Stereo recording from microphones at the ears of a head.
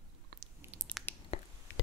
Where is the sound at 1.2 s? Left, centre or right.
Left.